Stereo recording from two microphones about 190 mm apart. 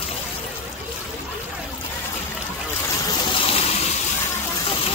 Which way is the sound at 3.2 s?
30° left (ahead or behind).